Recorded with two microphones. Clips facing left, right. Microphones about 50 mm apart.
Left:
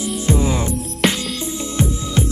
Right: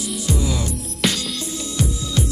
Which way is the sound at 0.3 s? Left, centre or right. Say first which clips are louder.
Left 5 dB; left.